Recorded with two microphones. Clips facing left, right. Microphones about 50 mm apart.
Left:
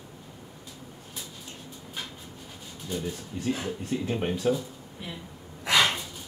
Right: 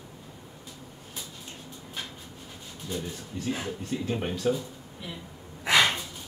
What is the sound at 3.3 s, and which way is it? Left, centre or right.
Speech, centre.